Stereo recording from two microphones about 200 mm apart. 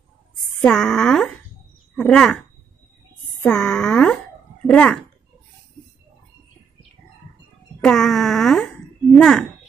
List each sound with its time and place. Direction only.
0.6 s speech: centre (ahead or behind)
3.4 s speech: 5° left (ahead or behind)
7.8 s speech: centre (ahead or behind)